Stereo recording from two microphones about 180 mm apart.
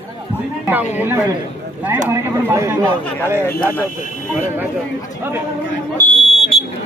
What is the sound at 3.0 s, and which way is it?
Speech, 5° left (ahead or behind).